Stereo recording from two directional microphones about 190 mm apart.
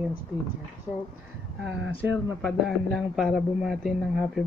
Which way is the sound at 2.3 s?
Centre (ahead or behind).